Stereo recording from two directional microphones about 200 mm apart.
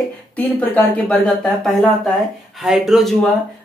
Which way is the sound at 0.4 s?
5° left (ahead or behind).